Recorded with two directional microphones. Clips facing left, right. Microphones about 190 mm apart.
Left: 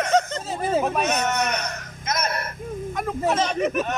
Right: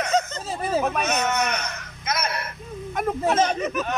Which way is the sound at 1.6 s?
40° left (ahead or behind).